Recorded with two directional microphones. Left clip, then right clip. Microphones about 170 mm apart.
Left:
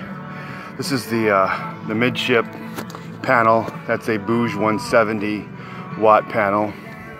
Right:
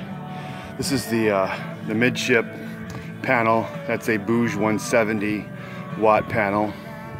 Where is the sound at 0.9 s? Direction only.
Centre (ahead or behind).